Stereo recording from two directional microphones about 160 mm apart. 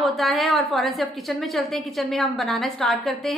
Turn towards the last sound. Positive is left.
turn(degrees=0)  # may be behind; listen again after turning